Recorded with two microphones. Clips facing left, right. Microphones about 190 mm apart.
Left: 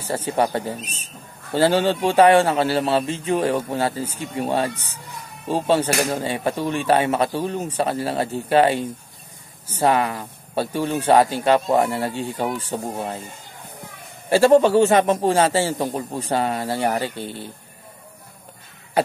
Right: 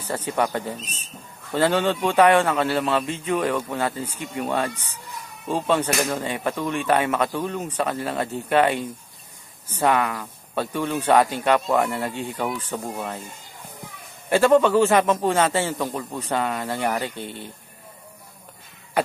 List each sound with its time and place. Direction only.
0.1 s a man's voice: 30° left (ahead or behind)
14.3 s a man's voice: 35° left (ahead or behind)